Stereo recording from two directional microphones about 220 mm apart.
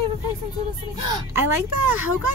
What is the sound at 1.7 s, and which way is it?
Speech, 80° right.